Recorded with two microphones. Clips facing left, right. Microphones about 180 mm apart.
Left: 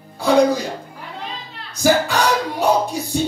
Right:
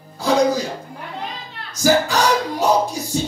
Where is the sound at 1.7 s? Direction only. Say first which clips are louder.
Even; 60° left (ahead or behind).